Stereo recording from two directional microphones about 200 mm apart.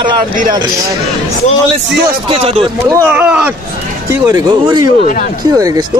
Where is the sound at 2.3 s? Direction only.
25° right (ahead or behind).